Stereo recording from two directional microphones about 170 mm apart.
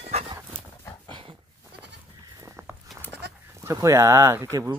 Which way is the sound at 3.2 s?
80° right.